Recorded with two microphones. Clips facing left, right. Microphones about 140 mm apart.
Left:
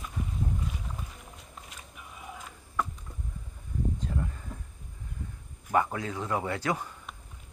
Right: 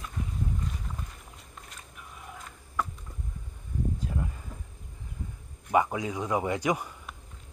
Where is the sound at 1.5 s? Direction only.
5° left (ahead or behind).